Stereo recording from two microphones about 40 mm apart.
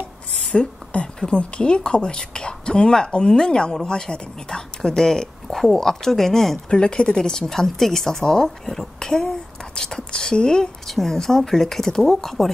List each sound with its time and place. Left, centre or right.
0.5 s a woman's voice: left; by 6.6 s centre
6.7 s a woman's voice: left; by 12.4 s centre